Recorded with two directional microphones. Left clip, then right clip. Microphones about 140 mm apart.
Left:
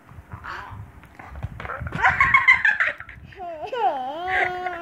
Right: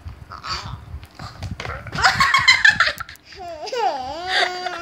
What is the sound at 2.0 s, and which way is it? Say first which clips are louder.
Dog: right 1 dB; 60° right (ahead or behind).